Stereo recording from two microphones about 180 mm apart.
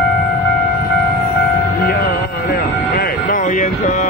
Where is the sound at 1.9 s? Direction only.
55° left (ahead or behind).